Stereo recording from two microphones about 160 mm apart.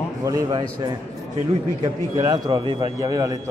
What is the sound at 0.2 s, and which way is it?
Speech, 20° right (ahead or behind).